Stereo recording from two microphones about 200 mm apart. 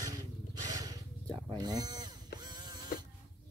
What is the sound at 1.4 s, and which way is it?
Sheep, 20° right (ahead or behind).